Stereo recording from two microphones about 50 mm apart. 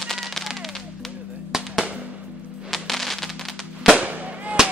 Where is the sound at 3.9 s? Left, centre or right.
Right.